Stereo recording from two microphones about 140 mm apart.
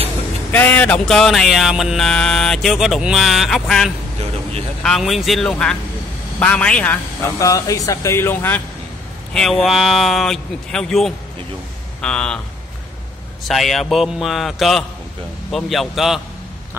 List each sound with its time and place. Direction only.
0.5 s a man's voice: 15° left (ahead or behind)
7.3 s speech: 25° left (ahead or behind)
9.3 s a man's voice: 5° left (ahead or behind)
13.5 s speech: centre (ahead or behind)